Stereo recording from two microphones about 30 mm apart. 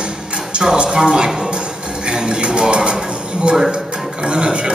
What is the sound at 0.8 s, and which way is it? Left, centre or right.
Speech, right.